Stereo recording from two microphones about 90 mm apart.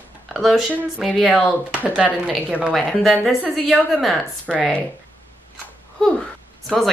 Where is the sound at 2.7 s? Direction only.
Centre (ahead or behind).